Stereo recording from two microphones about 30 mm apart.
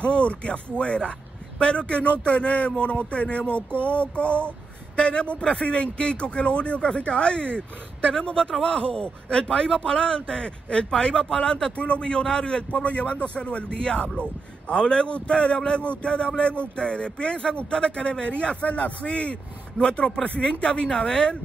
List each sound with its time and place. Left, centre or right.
0.0 s speech: left
2.0 s a sound: left
4.9 s speech: left
11.7 s a sound: left
12.0 s speech: left
13.1 s speech: left
18.7 s a sound: left
19.8 s speech: left
20.8 s speech: left